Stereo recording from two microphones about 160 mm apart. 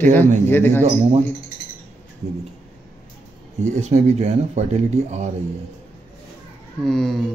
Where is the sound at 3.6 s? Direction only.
45° right (ahead or behind).